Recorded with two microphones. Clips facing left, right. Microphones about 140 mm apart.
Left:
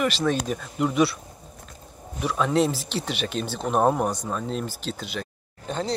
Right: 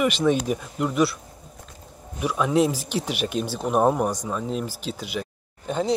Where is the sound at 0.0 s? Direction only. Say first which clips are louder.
Right 3 dB; 10° right (ahead or behind).